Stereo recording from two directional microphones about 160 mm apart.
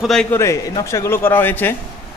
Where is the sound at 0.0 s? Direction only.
5° left (ahead or behind).